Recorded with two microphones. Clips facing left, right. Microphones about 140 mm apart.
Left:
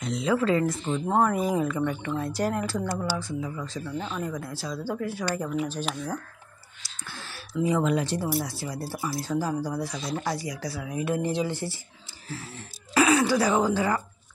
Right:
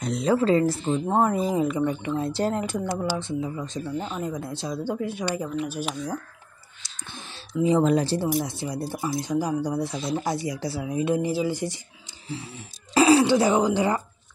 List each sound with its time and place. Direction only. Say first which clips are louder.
0.0 s speech: right 3 dB; 40° right (ahead or behind); by 5.4 s 20° right (ahead or behind)
6.8 s whispering: even; 20° right (ahead or behind)
7.8 s speech: right 4 dB; 35° right (ahead or behind)
8.3 s speech: right 3 dB; 20° right (ahead or behind)
12.9 s speech: right 4 dB; 30° right (ahead or behind)